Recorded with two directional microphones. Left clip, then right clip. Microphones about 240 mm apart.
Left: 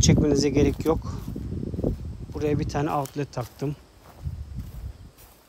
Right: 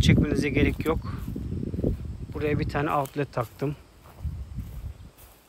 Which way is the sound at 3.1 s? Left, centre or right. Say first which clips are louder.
Right 3 dB; centre.